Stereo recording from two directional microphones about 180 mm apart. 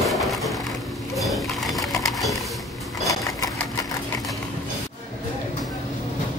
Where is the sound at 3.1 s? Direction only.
20° left (ahead or behind).